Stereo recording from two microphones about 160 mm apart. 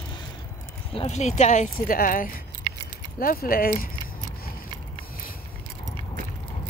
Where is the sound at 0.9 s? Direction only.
40° left (ahead or behind); by 3.9 s 65° left (ahead or behind).